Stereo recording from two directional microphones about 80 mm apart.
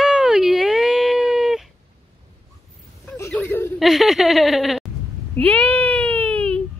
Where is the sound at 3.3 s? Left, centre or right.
Left.